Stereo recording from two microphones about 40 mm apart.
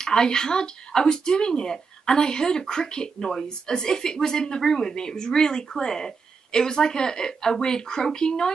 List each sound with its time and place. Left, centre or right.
0.0 s speech: centre